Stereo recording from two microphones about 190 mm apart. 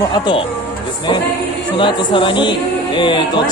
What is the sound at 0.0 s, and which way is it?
Speech, 25° left (ahead or behind).